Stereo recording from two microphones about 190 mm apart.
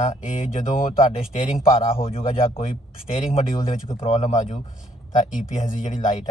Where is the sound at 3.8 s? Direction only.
35° left (ahead or behind).